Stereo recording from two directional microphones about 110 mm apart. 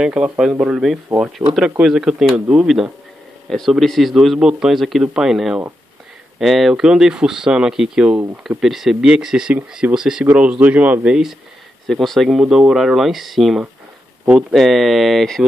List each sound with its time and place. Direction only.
0.0 s speech: 10° right (ahead or behind)
9.6 s speech: 15° right (ahead or behind)
9.9 s speech: 5° right (ahead or behind)